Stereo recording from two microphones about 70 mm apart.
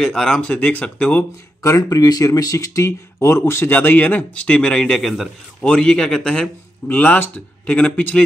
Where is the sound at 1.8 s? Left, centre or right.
Left; by 6.4 s centre.